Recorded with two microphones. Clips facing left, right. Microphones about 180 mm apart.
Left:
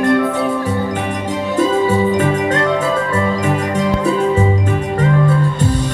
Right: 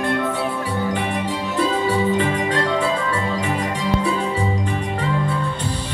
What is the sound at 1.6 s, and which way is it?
Music, 45° left (ahead or behind).